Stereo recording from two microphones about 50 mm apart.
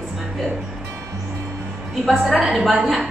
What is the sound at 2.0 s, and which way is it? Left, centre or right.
A woman's voice, centre.